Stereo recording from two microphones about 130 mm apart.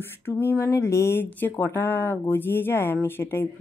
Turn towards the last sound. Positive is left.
turn(degrees=15)  # may be behind; listen again after turning